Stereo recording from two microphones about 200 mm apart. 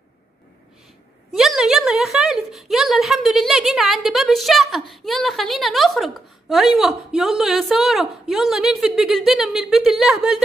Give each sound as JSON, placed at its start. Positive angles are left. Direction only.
{"t": 1.3, "sound": "a woman's voice", "side_deg": 0}